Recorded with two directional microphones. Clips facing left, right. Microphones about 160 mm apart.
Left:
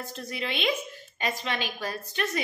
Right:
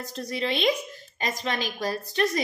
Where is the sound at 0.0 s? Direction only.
35° right (ahead or behind).